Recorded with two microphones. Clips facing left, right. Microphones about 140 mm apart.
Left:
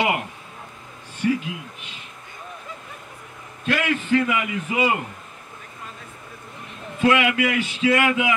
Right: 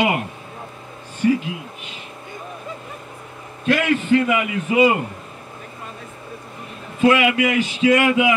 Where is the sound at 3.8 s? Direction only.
20° right (ahead or behind).